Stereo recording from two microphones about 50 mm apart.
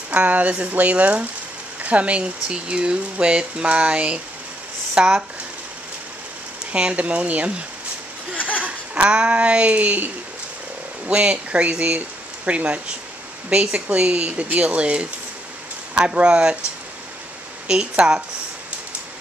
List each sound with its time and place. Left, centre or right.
0.1 s speech: right
6.7 s speech: right
8.4 s a sound: left
8.6 s speech: right
11.1 s speech: right
17.6 s speech: centre